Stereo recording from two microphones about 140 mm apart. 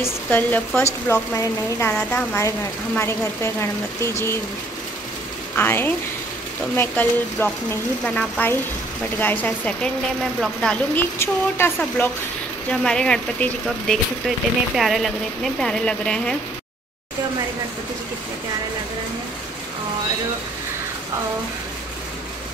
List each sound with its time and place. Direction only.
0.0 s a woman's voice: 15° left (ahead or behind)
5.6 s speech: 15° left (ahead or behind)
11.1 s speech: 15° left (ahead or behind)
12.8 s speech: 5° left (ahead or behind)